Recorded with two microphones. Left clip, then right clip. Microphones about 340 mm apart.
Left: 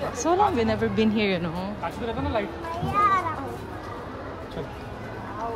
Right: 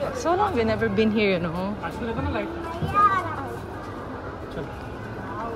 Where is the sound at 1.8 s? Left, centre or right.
Left.